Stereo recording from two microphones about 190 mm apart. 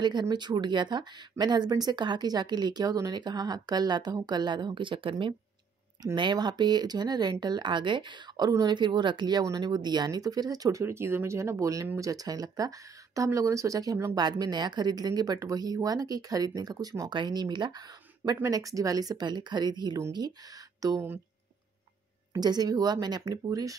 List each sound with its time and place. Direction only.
0.0 s speech: 20° right (ahead or behind)
22.3 s speech: 20° right (ahead or behind)